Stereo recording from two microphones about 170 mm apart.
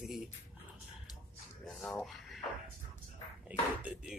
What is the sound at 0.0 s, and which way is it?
Dog, centre (ahead or behind).